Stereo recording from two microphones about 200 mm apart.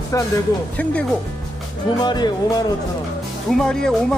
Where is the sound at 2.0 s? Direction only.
20° left (ahead or behind).